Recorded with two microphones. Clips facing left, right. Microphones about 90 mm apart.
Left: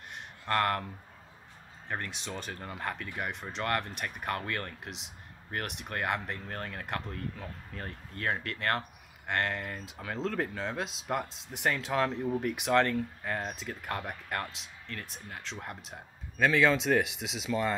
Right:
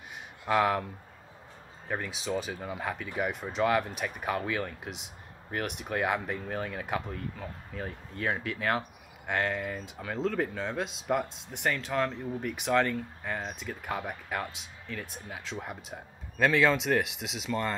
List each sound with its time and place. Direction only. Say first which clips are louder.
0.5 s speech: right 3 dB; 5° right (ahead or behind)
1.9 s speech: right 5 dB; centre (ahead or behind)